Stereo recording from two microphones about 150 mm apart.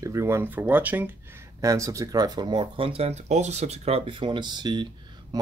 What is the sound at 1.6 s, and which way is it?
Speech, 20° right (ahead or behind).